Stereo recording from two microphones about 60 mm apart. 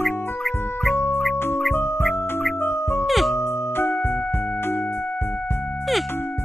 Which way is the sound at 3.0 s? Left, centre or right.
Centre.